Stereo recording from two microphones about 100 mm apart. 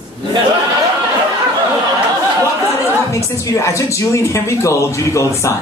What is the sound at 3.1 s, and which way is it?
A man's voice, 30° left (ahead or behind).